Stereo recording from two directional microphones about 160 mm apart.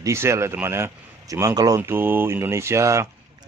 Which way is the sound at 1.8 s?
10° right (ahead or behind).